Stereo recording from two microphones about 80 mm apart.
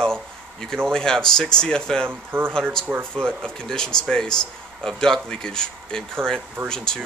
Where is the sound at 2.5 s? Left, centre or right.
Centre.